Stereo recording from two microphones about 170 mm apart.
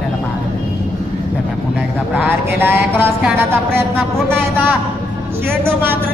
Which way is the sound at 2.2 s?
10° right (ahead or behind).